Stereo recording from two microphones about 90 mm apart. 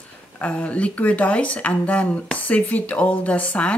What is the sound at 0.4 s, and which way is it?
Speech, 15° left (ahead or behind).